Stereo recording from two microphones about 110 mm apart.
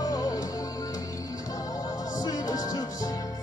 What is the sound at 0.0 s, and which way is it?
Music, 35° left (ahead or behind).